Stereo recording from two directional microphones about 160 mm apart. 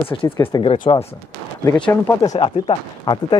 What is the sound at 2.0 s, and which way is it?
Speech, 15° left (ahead or behind).